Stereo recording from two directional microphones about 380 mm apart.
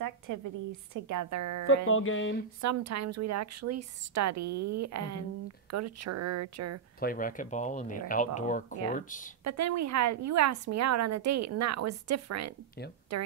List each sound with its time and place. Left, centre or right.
0.3 s a woman's voice: right
1.9 s speech: left
2.6 s a woman's voice: right
7.0 s speech: left
9.4 s a woman's voice: right